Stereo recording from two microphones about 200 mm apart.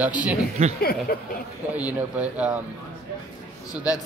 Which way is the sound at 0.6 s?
30° right (ahead or behind).